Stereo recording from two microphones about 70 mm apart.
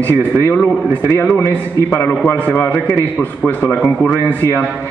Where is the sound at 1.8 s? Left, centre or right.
Right.